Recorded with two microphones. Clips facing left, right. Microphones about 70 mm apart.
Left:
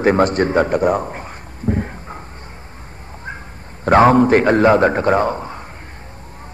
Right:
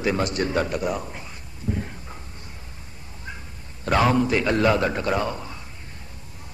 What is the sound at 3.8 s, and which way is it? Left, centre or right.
A man's voice, left.